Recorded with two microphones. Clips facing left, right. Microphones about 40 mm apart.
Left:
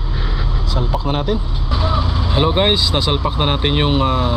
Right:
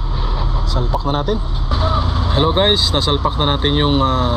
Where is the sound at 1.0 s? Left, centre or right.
Left.